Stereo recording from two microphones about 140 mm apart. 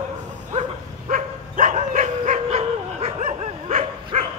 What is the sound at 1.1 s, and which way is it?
Dog, 65° right (ahead or behind).